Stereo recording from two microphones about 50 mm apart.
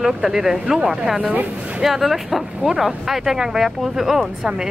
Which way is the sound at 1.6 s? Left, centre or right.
Right.